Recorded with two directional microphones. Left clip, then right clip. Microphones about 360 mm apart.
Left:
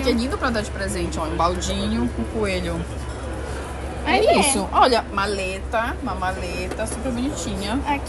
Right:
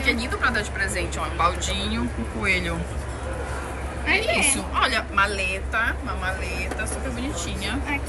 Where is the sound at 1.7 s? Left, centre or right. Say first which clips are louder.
Left 2 dB; centre.